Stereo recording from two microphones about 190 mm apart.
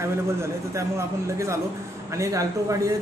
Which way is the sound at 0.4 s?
15° right (ahead or behind).